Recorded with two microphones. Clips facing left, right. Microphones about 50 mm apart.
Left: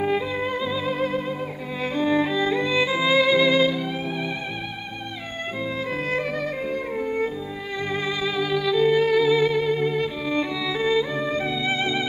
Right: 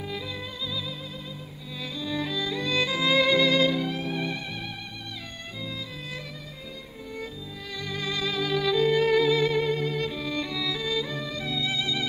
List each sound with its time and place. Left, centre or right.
0.0 s music: left
2.0 s music: left
2.7 s music: left
7.0 s music: left
7.9 s music: left